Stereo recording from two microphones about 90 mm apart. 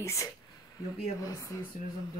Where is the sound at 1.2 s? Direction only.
40° left (ahead or behind).